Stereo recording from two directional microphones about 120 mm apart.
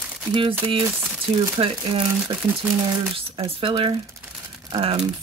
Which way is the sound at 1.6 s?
50° right (ahead or behind).